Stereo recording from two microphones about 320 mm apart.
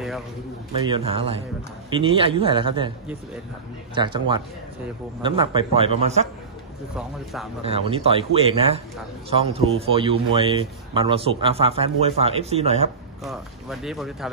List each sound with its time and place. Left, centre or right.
0.8 s speech: centre
3.9 s speech: centre
7.6 s speech: centre
13.2 s speech: centre